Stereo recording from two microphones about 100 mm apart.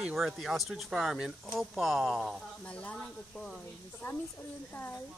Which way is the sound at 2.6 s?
10° left (ahead or behind).